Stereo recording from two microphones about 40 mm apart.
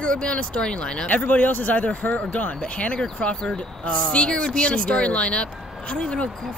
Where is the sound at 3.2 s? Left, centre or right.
Left.